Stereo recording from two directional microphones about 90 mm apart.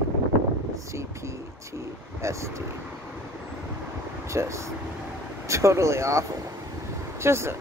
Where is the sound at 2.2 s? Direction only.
35° right (ahead or behind).